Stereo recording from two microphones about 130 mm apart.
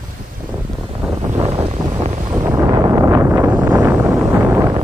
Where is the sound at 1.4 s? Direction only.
50° right (ahead or behind).